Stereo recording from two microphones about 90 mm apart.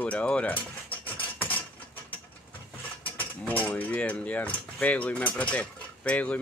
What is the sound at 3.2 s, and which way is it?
Speech, 20° left (ahead or behind).